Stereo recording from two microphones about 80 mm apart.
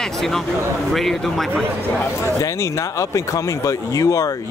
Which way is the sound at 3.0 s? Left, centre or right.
Left.